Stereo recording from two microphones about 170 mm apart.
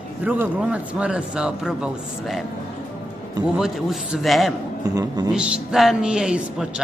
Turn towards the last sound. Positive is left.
turn(degrees=-5)  # may be behind; listen again after turning